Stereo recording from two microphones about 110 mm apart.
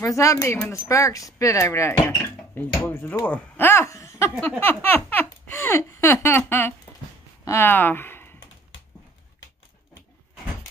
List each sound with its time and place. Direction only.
0.0 s speech: 30° left (ahead or behind)